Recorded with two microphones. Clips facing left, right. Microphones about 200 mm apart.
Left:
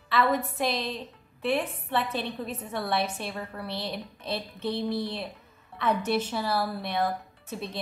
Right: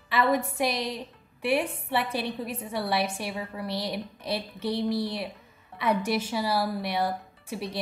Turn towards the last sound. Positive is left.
turn(degrees=-10)  # may be behind; listen again after turning